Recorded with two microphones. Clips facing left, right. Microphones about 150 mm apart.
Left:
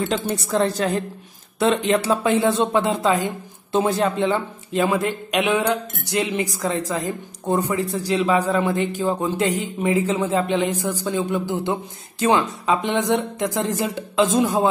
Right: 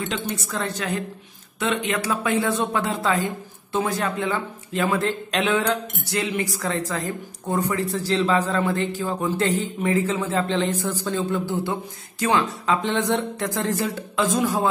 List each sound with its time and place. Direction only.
0.0 s a woman's voice: 35° left (ahead or behind)